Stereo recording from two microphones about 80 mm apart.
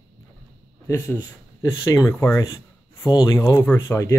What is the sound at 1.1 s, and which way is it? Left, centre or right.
Speech, left.